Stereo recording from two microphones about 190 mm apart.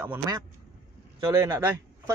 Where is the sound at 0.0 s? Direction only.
10° right (ahead or behind).